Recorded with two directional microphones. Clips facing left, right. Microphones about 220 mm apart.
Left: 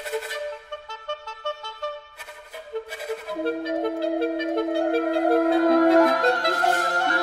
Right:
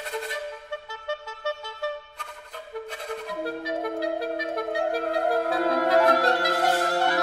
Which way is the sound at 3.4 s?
25° left (ahead or behind).